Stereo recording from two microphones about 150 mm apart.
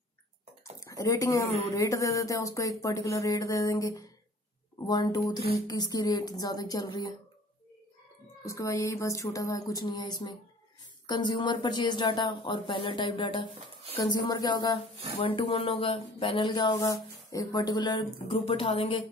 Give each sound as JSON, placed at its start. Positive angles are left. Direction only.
{"t": 0.7, "sound": "speech", "side_deg": 20}
{"t": 8.5, "sound": "speech", "side_deg": 20}
{"t": 16.7, "sound": "speech", "side_deg": 20}